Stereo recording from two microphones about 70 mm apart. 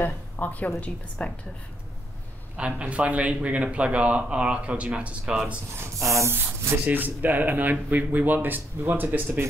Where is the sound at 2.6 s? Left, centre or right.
Centre.